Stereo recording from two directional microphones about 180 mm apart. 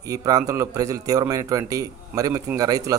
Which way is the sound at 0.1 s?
20° right (ahead or behind).